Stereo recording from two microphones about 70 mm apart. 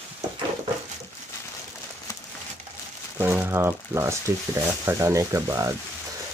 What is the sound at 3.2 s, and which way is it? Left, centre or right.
Speech, right.